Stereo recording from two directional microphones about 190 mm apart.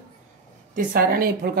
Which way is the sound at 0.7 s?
50° right (ahead or behind).